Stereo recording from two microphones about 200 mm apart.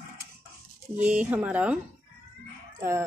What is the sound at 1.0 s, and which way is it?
Speech, 5° right (ahead or behind).